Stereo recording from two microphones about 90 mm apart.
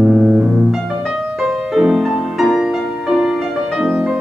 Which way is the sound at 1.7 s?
5° right (ahead or behind).